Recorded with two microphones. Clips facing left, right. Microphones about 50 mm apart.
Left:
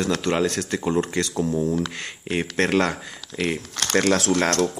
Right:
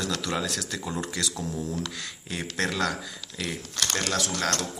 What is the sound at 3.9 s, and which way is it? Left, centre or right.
Speech, left.